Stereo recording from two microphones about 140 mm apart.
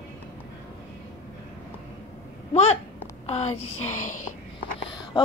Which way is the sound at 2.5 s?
50° left (ahead or behind).